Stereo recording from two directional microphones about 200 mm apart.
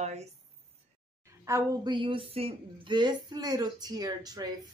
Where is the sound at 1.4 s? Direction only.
20° right (ahead or behind).